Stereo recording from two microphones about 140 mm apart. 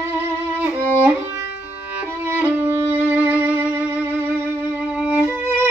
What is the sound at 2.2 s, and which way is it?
Violin, 15° right (ahead or behind).